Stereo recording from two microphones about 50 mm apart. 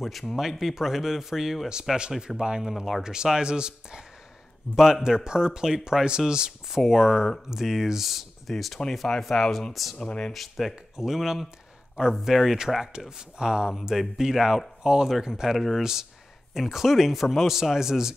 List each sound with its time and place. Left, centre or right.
0.0 s speech: centre
1.7 s speech: centre
2.7 s speech: centre
3.0 s speech: centre
9.9 s speech: centre
10.3 s speech: centre